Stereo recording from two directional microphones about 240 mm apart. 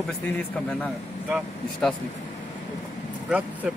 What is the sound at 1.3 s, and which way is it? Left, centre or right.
Speech, centre.